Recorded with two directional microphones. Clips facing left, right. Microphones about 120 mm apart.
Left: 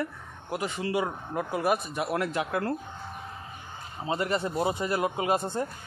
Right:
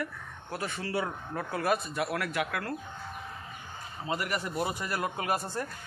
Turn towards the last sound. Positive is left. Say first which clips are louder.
# left 5 dB
turn(degrees=20)  # may be behind; listen again after turning